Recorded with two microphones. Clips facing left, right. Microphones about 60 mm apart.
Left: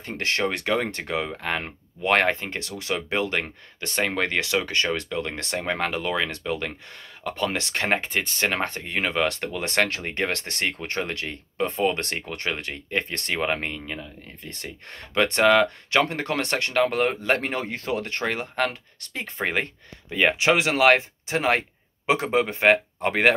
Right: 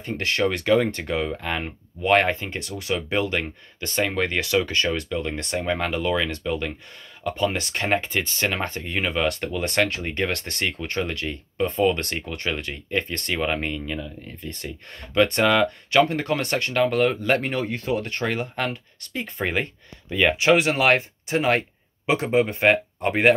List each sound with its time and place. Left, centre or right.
0.2 s speech: left
0.5 s speech: left
4.5 s speech: left
4.8 s speech: left
7.2 s speech: left
7.7 s speech: left
17.4 s speech: left
22.5 s speech: left